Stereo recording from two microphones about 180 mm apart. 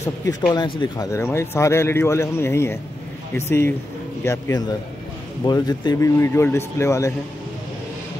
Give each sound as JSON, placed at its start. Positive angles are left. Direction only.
{"t": 0.0, "sound": "speech", "side_deg": 20}